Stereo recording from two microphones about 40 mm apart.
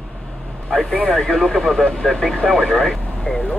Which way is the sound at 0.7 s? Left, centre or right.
Centre.